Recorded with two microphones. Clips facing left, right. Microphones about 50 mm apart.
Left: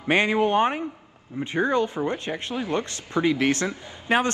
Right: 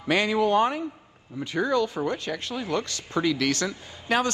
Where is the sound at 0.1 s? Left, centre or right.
Left.